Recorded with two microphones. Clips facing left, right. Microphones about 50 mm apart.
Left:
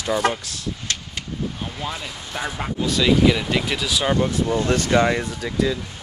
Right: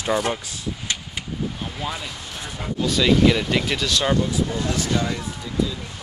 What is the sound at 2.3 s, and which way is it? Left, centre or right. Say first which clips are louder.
Speech: left 10 dB; left.